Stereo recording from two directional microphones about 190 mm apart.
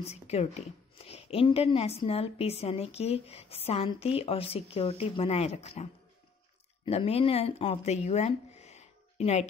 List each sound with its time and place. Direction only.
0.0 s a woman's voice: 35° left (ahead or behind)
6.9 s speech: 30° left (ahead or behind)